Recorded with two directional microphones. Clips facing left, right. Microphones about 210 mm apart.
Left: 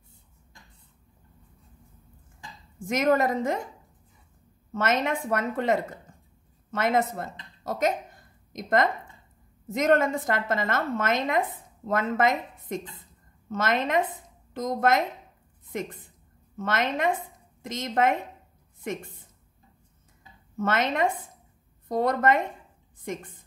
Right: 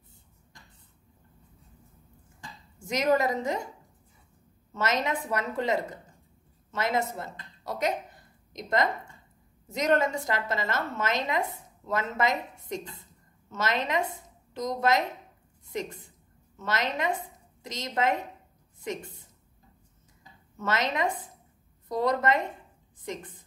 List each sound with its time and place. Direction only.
2.9 s a woman's voice: 55° left (ahead or behind)
4.7 s a woman's voice: 55° left (ahead or behind)
20.5 s a woman's voice: 55° left (ahead or behind)